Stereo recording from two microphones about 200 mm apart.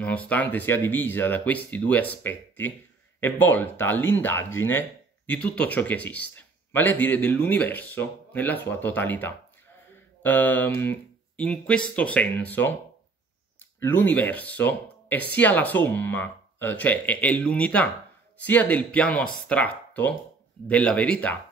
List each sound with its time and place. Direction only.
0.0 s speech: 5° left (ahead or behind)
13.7 s speech: 10° left (ahead or behind)